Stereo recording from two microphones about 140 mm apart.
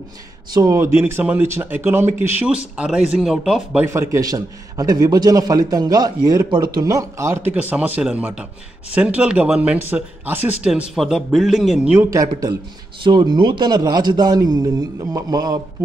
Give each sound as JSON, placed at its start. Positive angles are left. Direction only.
{"t": 0.5, "sound": "speech", "side_deg": -25}
{"t": 3.9, "sound": "a man's voice", "side_deg": -20}
{"t": 11.9, "sound": "speech", "side_deg": -15}
{"t": 12.2, "sound": "a man's voice", "side_deg": -25}